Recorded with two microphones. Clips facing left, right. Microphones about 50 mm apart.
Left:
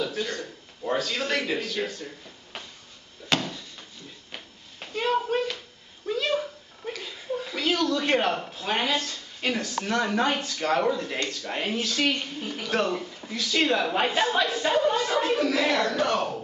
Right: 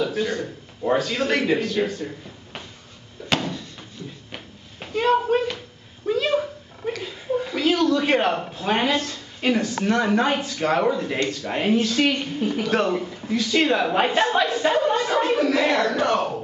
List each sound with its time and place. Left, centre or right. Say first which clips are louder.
0.0 s speech: right 6 dB; centre
3.3 s a sound: right 3 dB; centre
6.0 s speech: right 5 dB; centre
7.0 s chuckle: right 6 dB; centre
8.5 s a woman's voice: right 5 dB; centre
13.0 s a sound: right 6 dB; centre
13.3 s speech: right 4 dB; centre